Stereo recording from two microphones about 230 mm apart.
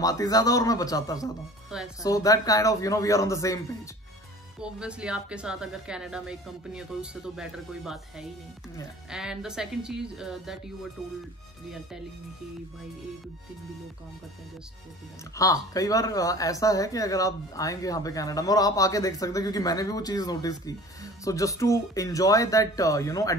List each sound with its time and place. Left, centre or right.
0.0 s speech: centre
1.7 s a woman's voice: centre
2.0 s speech: centre
4.6 s a woman's voice: centre
15.3 s speech: centre